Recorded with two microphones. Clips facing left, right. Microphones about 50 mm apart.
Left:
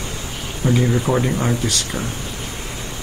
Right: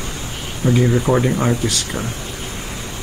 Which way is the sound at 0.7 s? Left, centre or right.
Centre.